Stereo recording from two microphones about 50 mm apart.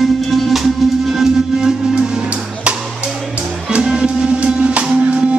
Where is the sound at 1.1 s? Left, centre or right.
Centre.